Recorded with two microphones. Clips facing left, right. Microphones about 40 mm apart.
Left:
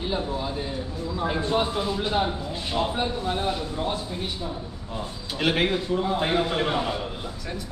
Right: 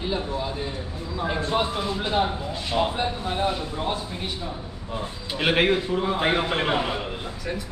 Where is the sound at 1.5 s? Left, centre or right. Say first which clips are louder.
Even; centre.